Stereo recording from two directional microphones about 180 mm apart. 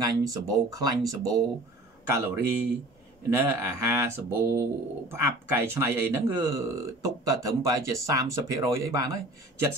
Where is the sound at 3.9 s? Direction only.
15° right (ahead or behind).